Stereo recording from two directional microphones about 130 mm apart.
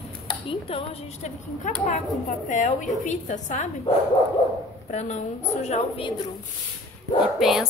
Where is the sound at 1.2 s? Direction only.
75° left (ahead or behind).